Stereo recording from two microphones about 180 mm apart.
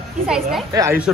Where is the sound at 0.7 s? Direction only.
20° right (ahead or behind).